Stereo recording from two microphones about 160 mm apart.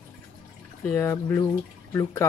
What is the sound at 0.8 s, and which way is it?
Speech, 10° left (ahead or behind).